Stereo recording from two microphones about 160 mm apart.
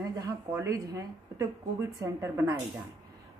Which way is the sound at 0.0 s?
20° right (ahead or behind).